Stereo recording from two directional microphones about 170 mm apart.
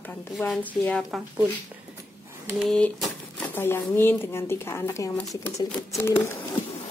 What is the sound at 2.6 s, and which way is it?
Speech, centre (ahead or behind).